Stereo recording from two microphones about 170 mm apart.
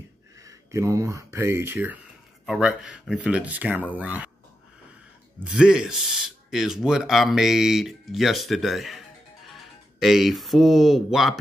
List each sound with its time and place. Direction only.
0.4 s speech: 20° right (ahead or behind)
5.4 s speech: 5° right (ahead or behind)